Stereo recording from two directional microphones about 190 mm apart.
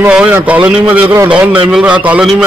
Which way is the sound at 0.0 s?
10° right (ahead or behind).